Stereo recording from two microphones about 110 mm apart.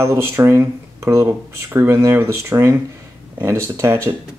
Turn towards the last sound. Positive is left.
turn(degrees=-20)  # may be behind; listen again after turning